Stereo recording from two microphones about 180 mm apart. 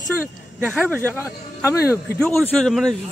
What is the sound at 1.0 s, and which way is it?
Speech, 15° left (ahead or behind).